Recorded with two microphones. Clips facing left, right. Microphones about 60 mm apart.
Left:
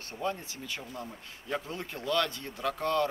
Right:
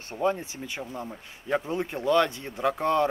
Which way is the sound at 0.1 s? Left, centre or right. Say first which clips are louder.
Right 8 dB; right.